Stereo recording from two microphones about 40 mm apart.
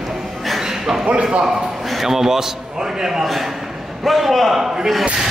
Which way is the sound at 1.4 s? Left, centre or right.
Centre.